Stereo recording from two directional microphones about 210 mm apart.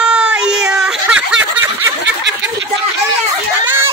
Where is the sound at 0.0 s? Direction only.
5° right (ahead or behind).